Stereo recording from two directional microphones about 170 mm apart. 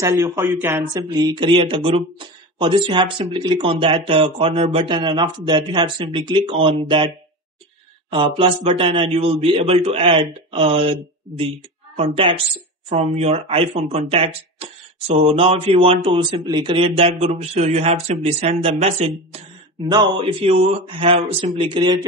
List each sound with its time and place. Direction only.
0.0 s speech: 15° right (ahead or behind)
8.1 s speech: 30° right (ahead or behind)